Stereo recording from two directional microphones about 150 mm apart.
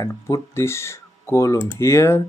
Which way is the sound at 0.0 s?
20° left (ahead or behind).